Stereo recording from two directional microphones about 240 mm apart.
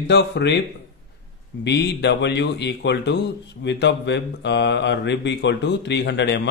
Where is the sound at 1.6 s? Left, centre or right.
Left.